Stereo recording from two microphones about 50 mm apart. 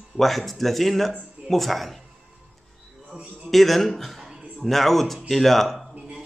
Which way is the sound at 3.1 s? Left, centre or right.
Right.